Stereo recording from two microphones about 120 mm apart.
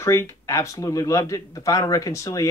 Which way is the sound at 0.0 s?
25° left (ahead or behind).